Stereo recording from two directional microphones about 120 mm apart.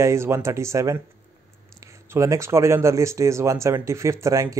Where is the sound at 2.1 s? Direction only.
25° right (ahead or behind).